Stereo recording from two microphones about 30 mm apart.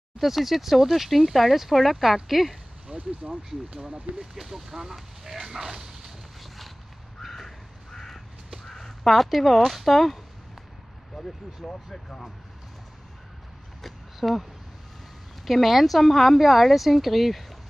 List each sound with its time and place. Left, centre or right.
0.2 s speech: centre
2.9 s speech: right
4.2 s speech: centre
7.3 s crow: centre
9.8 s speech: centre
11.1 s speech: centre
13.8 s a sound: centre
15.4 s speech: centre